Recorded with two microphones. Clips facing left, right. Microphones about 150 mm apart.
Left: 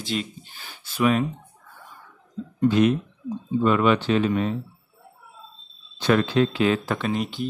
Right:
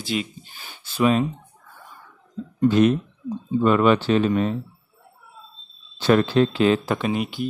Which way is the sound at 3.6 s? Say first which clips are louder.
Right 3 dB; 40° right (ahead or behind).